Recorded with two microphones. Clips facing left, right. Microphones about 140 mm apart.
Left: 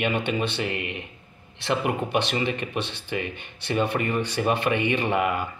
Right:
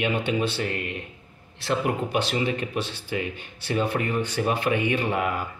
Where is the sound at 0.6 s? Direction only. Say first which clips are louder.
Even; 5° left (ahead or behind).